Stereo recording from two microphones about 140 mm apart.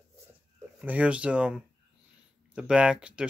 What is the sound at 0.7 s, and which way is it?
Speech, 10° right (ahead or behind).